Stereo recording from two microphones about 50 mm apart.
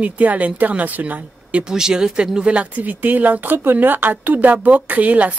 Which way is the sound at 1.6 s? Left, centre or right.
Centre.